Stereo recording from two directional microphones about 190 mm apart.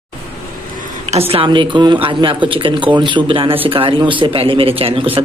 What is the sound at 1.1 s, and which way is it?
A man's voice, 30° right (ahead or behind).